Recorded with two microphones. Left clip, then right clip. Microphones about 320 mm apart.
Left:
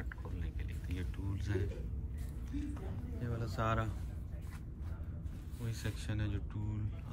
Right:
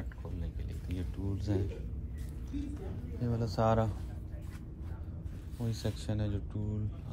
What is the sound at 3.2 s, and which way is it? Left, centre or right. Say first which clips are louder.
Speech: right 7 dB; centre.